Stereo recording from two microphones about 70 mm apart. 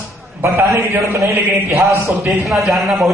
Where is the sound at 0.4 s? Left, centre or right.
Right.